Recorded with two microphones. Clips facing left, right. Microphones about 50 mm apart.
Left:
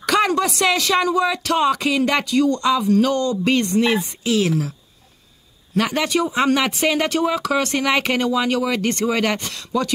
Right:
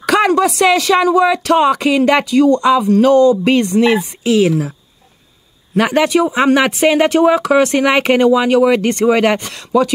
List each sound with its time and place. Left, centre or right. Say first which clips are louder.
0.0 s a sound: right 6 dB; centre
0.6 s speech: right 6 dB; centre
5.8 s speech: right 7 dB; centre